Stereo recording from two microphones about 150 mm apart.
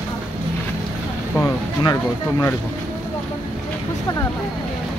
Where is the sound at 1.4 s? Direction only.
25° left (ahead or behind).